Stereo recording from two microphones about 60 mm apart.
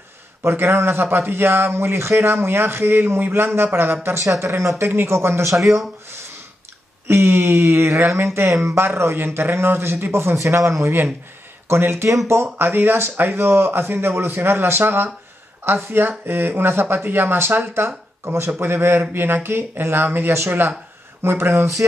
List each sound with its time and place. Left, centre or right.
0.4 s speech: right
4.4 s speech: right
7.1 s speech: right
10.9 s speech: right
11.6 s speech: right
12.5 s speech: right
21.5 s speech: right